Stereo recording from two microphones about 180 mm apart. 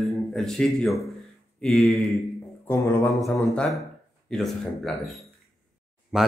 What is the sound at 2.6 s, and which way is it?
Music, 10° left (ahead or behind).